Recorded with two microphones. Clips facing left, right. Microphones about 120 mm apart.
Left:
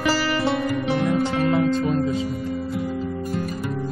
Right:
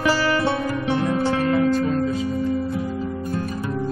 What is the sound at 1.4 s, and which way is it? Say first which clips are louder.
Music: right 1 dB; 20° left (ahead or behind).